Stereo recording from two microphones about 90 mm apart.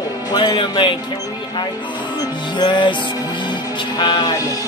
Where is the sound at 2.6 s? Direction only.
60° left (ahead or behind).